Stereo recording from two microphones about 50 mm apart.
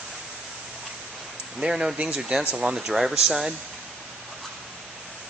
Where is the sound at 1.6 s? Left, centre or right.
Centre.